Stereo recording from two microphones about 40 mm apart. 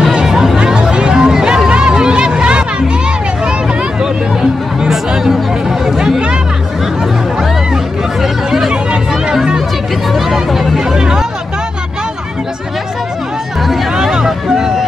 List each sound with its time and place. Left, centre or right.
0.1 s chatter: centre
0.7 s a sound: right
4.0 s music: centre
5.9 s chatter: centre
7.7 s hubbub: centre
9.3 s chatter: centre
10.1 s music: centre
11.0 s hubbub: centre
14.1 s vehicle: centre